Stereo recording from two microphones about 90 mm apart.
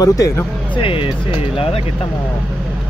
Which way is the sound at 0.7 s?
75° left (ahead or behind).